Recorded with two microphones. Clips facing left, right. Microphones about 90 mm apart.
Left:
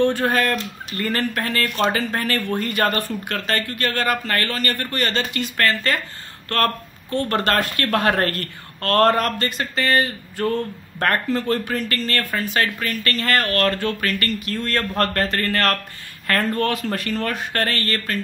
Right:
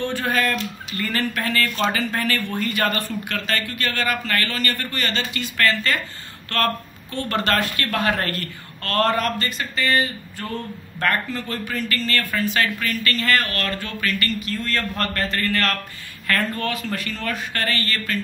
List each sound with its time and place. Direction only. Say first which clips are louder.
0.0 s speech: left 4 dB; 50° left (ahead or behind)